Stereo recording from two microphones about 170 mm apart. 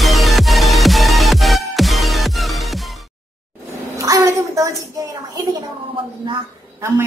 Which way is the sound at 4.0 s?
20° right (ahead or behind).